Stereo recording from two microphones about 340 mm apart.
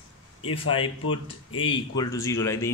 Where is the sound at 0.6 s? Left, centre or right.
Centre.